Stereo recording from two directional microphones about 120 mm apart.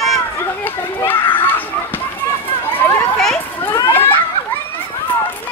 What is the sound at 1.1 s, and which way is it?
Children playing, 40° left (ahead or behind).